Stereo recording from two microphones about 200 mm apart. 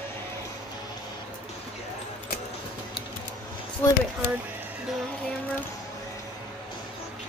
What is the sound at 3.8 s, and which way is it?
Speech, 10° left (ahead or behind).